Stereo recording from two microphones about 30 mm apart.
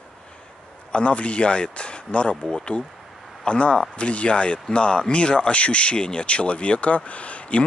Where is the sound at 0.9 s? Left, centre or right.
Left.